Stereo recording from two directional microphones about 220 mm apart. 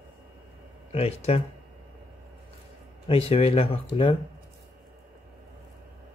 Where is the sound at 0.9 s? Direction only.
30° left (ahead or behind).